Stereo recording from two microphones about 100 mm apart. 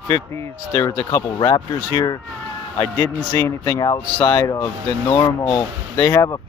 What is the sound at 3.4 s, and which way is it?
A man's voice, 30° left (ahead or behind).